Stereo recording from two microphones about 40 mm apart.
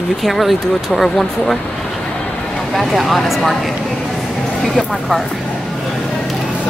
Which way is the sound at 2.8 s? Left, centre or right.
Centre.